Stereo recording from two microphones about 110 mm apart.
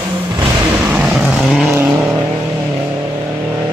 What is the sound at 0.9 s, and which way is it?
Vehicle, 10° right (ahead or behind).